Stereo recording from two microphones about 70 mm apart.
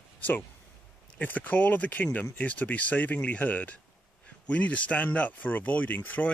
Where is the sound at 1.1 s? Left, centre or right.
Left.